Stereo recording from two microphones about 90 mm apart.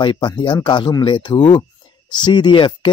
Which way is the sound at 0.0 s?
60° left (ahead or behind).